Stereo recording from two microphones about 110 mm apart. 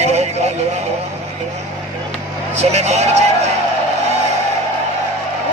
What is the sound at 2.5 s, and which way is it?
Speech, 85° right.